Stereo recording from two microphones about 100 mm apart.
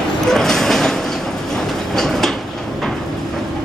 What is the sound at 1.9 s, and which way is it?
Train, 5° left (ahead or behind).